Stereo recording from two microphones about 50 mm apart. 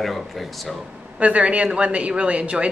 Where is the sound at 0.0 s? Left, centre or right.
Centre.